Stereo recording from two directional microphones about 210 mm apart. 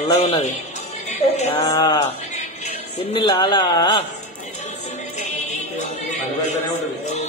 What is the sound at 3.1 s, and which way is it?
Speech, 20° left (ahead or behind).